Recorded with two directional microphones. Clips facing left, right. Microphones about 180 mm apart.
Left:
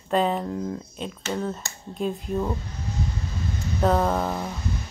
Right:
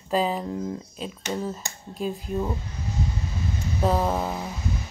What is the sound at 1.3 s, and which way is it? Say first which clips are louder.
Speech: left 1 dB; 5° right (ahead or behind).